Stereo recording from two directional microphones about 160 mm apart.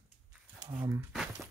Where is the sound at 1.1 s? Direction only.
5° right (ahead or behind).